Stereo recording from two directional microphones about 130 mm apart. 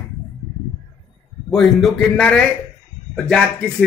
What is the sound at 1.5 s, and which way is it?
Speech, centre (ahead or behind).